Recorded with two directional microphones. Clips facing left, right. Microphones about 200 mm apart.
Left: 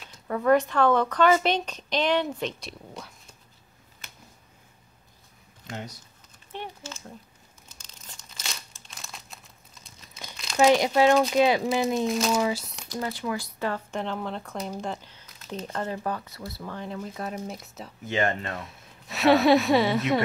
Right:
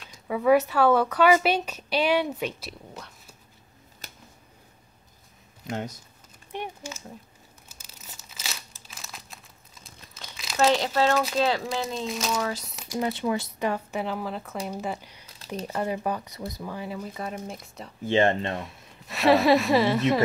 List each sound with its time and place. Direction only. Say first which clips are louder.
0.3 s speech: right 1 dB; 5° right (ahead or behind)
4.0 s a sound: right 3 dB; 35° right (ahead or behind)
5.7 s speech: right 5 dB; 50° right (ahead or behind)
6.5 s speech: right 3 dB; 10° right (ahead or behind)
7.6 s crumpling: even; 5° right (ahead or behind)
10.6 s speech: left 3 dB; 15° left (ahead or behind)
12.1 s a woman's voice: left 4 dB; centre (ahead or behind)
13.0 s speech: right 4 dB; 25° right (ahead or behind)
15.2 s a sound: right 2 dB; 35° right (ahead or behind)
15.5 s speech: right 3 dB; 10° right (ahead or behind)
18.0 s speech: right 5 dB; 25° right (ahead or behind)
18.6 s a woman's voice: right 3 dB; centre (ahead or behind)